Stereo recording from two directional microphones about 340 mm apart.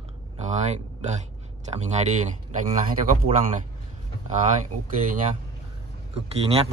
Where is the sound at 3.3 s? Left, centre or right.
Centre.